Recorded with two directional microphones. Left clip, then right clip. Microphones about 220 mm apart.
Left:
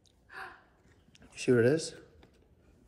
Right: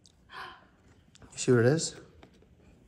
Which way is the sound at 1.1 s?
5° right (ahead or behind).